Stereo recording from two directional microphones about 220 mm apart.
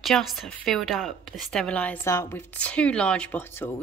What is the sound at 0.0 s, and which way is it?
A woman's voice, centre (ahead or behind).